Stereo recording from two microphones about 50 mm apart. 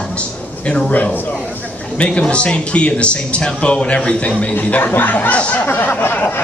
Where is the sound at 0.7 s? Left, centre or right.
Left.